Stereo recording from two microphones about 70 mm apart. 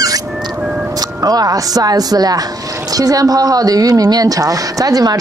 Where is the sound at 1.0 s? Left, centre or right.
Right.